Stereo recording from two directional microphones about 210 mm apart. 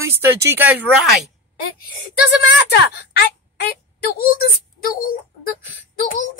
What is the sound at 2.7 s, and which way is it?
Speech, 50° left (ahead or behind).